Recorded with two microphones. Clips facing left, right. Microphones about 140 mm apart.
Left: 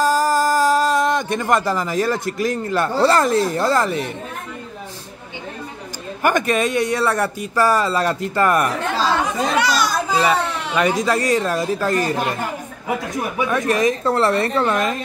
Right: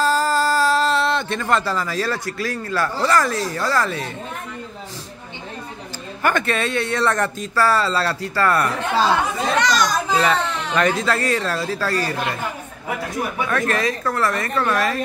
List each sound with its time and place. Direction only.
0.0 s speech: 15° left (ahead or behind)
6.2 s a child's voice: 15° left (ahead or behind)
13.5 s a woman's voice: 15° left (ahead or behind)